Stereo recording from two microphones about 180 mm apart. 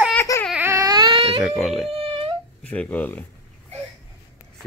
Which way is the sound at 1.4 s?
Centre (ahead or behind).